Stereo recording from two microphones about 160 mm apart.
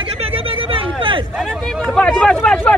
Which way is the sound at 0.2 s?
35° right (ahead or behind).